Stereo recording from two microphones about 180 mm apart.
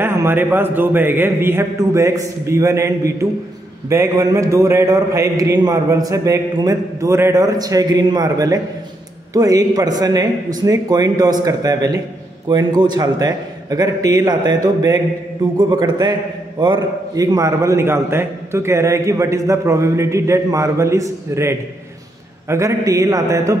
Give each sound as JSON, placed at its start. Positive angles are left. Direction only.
{"t": 0.0, "sound": "a man's voice", "side_deg": -15}